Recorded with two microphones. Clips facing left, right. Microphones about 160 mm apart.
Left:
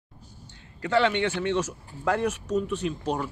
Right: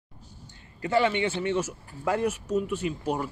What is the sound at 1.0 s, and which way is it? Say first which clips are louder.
Speech: left 1 dB; 65° left (ahead or behind).